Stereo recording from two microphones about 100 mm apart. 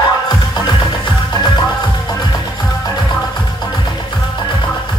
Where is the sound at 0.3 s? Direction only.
45° left (ahead or behind).